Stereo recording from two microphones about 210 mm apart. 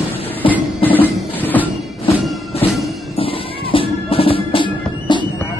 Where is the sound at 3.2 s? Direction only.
25° left (ahead or behind).